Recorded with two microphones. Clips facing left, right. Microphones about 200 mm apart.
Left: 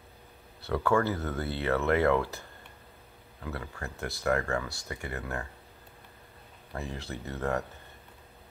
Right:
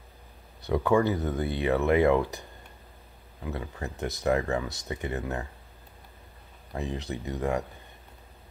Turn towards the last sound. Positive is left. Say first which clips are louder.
# right 3 dB
turn(degrees=-15)  # may be behind; listen again after turning